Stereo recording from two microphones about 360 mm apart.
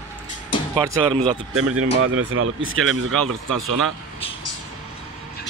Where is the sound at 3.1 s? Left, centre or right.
Centre.